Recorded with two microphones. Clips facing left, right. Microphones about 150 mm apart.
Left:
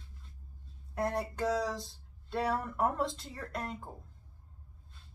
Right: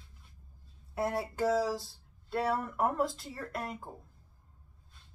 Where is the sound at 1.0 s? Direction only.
5° right (ahead or behind).